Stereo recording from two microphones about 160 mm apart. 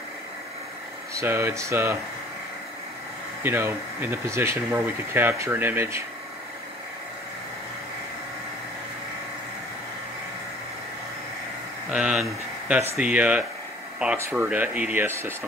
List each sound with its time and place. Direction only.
1.1 s speech: 15° right (ahead or behind)
3.4 s speech: 15° right (ahead or behind)
11.9 s speech: 5° right (ahead or behind)